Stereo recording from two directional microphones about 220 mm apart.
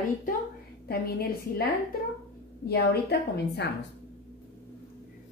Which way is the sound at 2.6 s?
45° left (ahead or behind).